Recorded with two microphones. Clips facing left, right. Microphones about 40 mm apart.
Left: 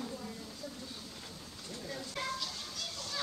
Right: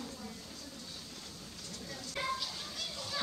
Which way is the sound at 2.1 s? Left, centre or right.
Centre.